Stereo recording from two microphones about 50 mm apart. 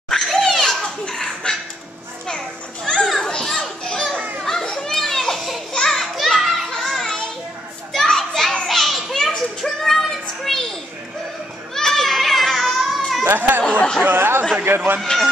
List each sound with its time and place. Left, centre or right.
0.1 s a sound: centre
2.2 s children playing: centre
4.2 s children playing: right
4.5 s children playing: centre
9.6 s music: centre
11.7 s children playing: centre
13.2 s speech: right
13.6 s speech: left
14.0 s speech: right
15.0 s a man's voice: centre